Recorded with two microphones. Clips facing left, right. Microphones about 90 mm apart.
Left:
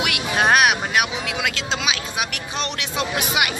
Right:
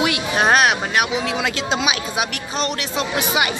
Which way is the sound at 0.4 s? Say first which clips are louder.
Right 1 dB; 5° left (ahead or behind).